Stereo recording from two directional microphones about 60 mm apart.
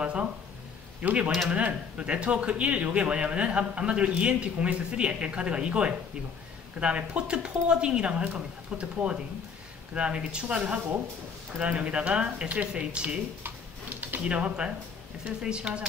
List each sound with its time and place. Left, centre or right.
1.0 s speech: right
13.4 s a sound: right
14.2 s speech: centre